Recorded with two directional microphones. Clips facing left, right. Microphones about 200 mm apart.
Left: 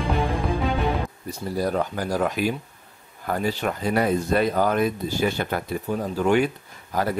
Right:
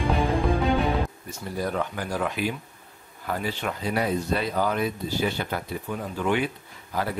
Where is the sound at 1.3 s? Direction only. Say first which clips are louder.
Left 8 dB; 35° left (ahead or behind).